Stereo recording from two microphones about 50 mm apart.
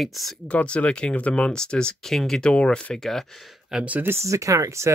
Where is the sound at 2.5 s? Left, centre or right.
Left.